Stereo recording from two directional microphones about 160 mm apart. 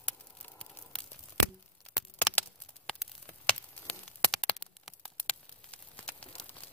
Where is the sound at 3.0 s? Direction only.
5° right (ahead or behind).